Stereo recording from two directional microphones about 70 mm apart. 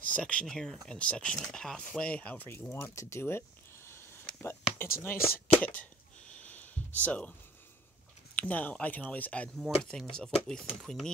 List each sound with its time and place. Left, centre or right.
0.0 s speech: centre
0.5 s speech: centre; by 2.5 s left
2.7 s a sound: left
4.7 s speech: left
5.6 s speech: left
6.5 s a sound: left
8.4 s speech: left
9.8 s speech: centre